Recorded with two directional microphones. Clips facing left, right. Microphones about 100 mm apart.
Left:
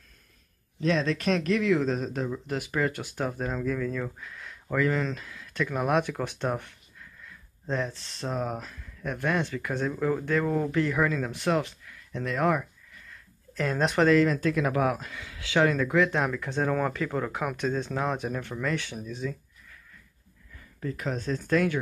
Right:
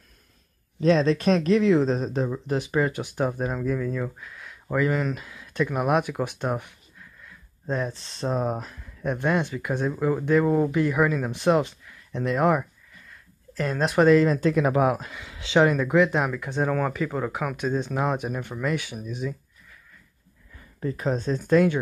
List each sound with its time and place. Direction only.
0.7 s speech: 35° right (ahead or behind); by 4.6 s 5° right (ahead or behind)
4.6 s speech: 15° right (ahead or behind)
13.6 s speech: centre (ahead or behind)
14.0 s speech: 20° right (ahead or behind)
20.5 s speech: 30° right (ahead or behind)